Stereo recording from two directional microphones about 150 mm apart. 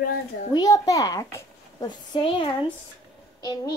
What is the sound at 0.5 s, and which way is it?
A child's voice, 25° left (ahead or behind).